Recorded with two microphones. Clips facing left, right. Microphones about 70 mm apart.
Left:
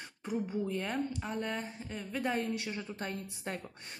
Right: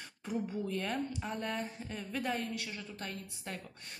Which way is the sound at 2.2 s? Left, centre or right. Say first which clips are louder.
Left 4 dB; left.